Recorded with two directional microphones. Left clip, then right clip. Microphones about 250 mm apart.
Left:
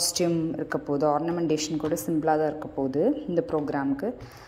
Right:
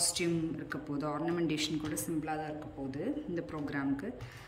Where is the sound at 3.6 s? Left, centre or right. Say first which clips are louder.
Left 8 dB; centre.